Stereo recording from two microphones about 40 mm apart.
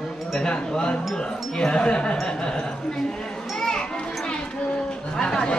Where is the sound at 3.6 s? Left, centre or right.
Centre.